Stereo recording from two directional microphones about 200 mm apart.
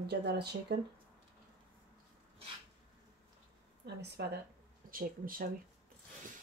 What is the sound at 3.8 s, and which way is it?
Speech, 55° right (ahead or behind).